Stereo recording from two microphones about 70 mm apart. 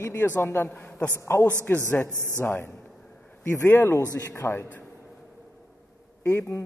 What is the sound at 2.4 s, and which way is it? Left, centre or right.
A woman's voice, left.